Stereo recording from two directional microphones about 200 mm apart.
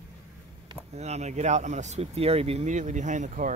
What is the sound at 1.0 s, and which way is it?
Speech, 35° right (ahead or behind).